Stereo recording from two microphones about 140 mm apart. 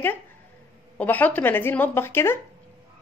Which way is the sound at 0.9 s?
10° left (ahead or behind).